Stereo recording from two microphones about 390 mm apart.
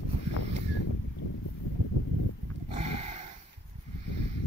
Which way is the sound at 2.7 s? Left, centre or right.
Centre.